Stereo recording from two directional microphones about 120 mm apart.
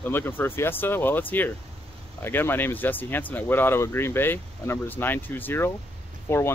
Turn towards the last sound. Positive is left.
turn(degrees=20)  # may be behind; listen again after turning